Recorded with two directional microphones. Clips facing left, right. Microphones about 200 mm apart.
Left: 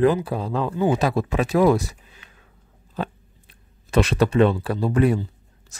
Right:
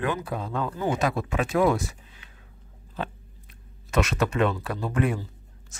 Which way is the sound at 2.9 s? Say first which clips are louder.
Left 4 dB; 35° left (ahead or behind).